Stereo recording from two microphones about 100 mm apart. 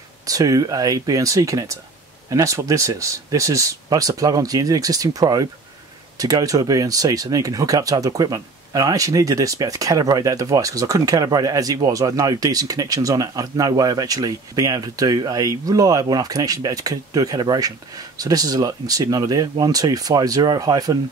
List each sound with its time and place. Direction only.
0.3 s speech: 35° right (ahead or behind)